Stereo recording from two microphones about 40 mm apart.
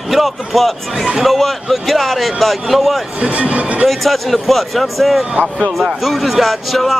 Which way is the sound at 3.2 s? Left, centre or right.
Right.